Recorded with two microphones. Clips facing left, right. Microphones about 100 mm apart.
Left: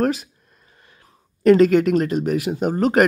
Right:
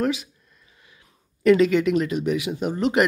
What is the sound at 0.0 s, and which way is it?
Speech, 45° left (ahead or behind).